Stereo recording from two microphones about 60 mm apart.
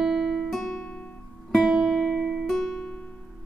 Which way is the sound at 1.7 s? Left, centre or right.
Centre.